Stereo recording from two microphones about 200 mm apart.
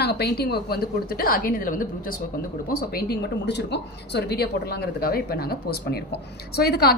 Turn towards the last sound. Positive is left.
turn(degrees=55)  # may be behind; listen again after turning